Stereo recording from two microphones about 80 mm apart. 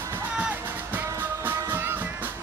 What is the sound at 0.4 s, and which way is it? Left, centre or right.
Music, centre.